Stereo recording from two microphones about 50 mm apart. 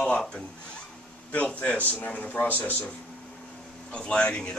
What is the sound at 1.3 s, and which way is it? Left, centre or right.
A man's voice, left.